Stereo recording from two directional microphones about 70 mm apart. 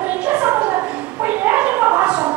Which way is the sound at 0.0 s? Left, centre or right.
Right.